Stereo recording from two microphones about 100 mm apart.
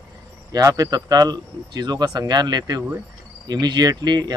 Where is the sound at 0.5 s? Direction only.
35° right (ahead or behind).